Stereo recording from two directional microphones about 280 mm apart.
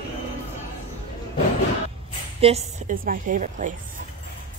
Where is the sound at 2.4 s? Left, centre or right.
Right.